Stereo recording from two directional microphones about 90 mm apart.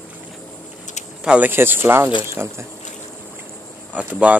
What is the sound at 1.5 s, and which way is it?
Speech, 25° right (ahead or behind).